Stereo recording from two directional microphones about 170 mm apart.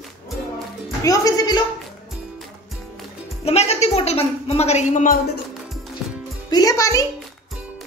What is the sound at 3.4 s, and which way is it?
A woman's voice, 40° left (ahead or behind).